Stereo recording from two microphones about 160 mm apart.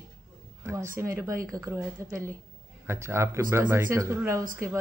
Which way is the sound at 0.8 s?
60° right (ahead or behind).